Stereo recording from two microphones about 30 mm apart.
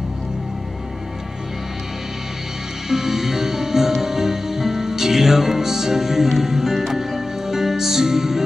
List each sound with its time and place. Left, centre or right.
2.9 s music: centre